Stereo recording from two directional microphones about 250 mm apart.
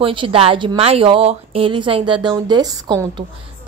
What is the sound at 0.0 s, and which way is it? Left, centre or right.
Speech, right.